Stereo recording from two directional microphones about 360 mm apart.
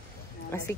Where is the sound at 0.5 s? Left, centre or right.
Centre.